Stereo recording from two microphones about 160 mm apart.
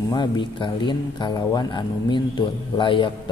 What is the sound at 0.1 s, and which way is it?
A man's voice, 30° left (ahead or behind).